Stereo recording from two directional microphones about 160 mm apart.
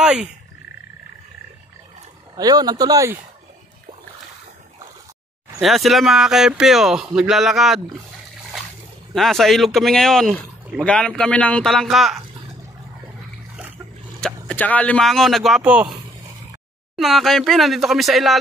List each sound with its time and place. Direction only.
0.0 s frog: 5° right (ahead or behind)
2.3 s speech: 25° right (ahead or behind)
5.6 s speech: centre (ahead or behind)
9.1 s speech: centre (ahead or behind)
14.2 s speech: 10° left (ahead or behind); by 15.9 s 10° right (ahead or behind)
16.9 s speech: centre (ahead or behind)